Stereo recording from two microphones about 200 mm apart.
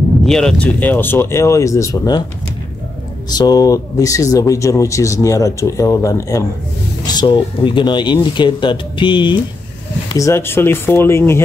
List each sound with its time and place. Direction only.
0.2 s speech: centre (ahead or behind); by 2.2 s 20° left (ahead or behind)
3.3 s speech: 20° left (ahead or behind)